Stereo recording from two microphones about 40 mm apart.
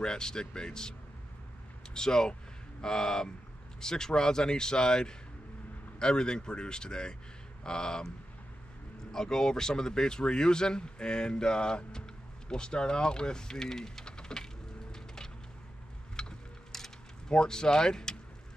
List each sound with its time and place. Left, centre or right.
0.0 s speech: centre
2.0 s speech: centre
9.1 s speech: centre
12.4 s typing: left
16.2 s a sound: centre
16.7 s mechanisms: centre
17.3 s speech: centre